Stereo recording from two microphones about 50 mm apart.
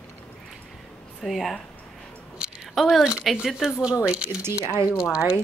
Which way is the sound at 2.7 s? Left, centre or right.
Centre.